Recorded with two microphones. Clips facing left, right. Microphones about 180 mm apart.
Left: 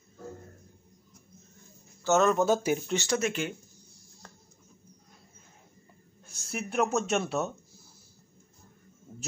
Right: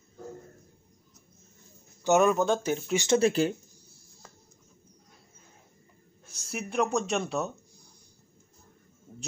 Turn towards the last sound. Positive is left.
turn(degrees=5)  # may be behind; listen again after turning